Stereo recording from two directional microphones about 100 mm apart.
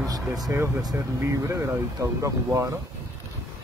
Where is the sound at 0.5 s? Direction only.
25° right (ahead or behind).